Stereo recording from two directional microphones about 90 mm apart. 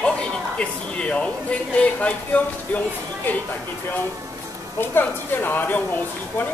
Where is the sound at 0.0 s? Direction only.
10° left (ahead or behind).